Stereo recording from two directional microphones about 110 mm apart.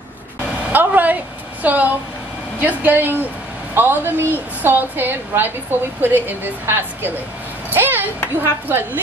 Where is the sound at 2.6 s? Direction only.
15° right (ahead or behind).